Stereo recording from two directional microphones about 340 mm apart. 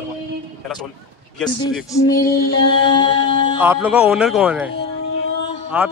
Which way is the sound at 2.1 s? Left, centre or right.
Left.